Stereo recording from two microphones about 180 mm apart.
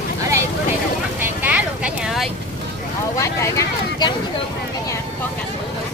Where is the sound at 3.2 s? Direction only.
15° left (ahead or behind).